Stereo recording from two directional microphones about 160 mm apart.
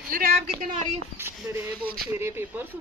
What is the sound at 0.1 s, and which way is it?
Speech, 60° right (ahead or behind).